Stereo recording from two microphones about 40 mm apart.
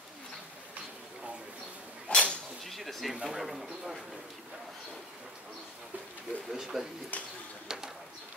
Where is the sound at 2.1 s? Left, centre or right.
Left.